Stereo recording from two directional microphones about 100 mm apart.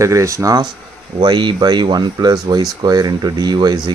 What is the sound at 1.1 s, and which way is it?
Speech, 50° right (ahead or behind).